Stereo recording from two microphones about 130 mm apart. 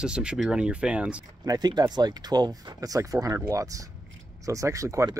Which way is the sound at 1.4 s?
30° right (ahead or behind).